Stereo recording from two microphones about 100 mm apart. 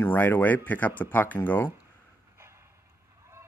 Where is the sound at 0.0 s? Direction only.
20° left (ahead or behind).